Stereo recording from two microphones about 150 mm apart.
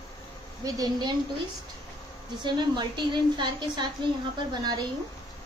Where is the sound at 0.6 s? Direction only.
25° right (ahead or behind).